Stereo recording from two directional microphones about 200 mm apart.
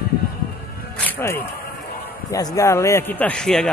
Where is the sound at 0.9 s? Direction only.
10° left (ahead or behind).